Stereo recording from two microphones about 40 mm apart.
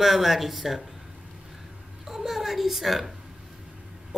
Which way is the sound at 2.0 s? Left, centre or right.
Centre.